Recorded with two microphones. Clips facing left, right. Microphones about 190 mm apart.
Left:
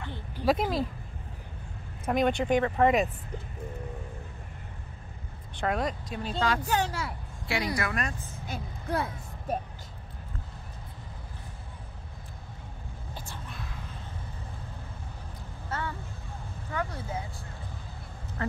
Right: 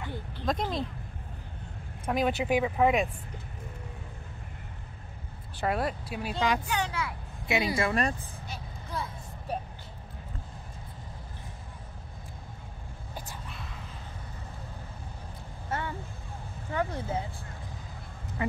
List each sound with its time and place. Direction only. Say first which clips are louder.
0.4 s speech: left 5 dB; 5° left (ahead or behind)
2.0 s speech: left 2 dB; 5° right (ahead or behind)
5.6 s speech: even; 5° right (ahead or behind)
6.6 s speech: left 3 dB; 40° left (ahead or behind)
7.4 s speech: right 3 dB; 20° right (ahead or behind)
8.5 s a sound: left 9 dB; 65° left (ahead or behind)
13.1 s whispering: right 1 dB; 5° right (ahead or behind)
16.7 s vehicle: right 3 dB; 25° right (ahead or behind)
18.4 s speech: right 1 dB; 15° right (ahead or behind)